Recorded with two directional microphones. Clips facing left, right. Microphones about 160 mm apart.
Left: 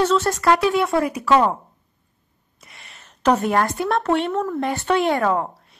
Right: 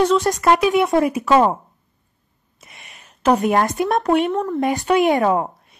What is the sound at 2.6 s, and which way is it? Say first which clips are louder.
A woman's voice: right 1 dB; 20° right (ahead or behind).